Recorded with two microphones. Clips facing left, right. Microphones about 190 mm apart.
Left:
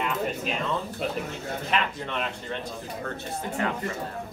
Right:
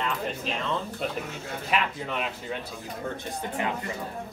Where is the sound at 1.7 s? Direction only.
5° right (ahead or behind).